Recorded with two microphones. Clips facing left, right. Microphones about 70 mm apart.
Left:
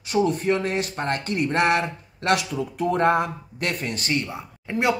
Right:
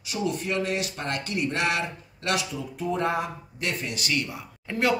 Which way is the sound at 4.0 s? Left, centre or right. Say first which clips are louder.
Left 3 dB; left.